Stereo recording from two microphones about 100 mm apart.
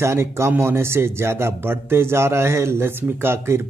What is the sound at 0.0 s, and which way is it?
A man's voice, 25° right (ahead or behind).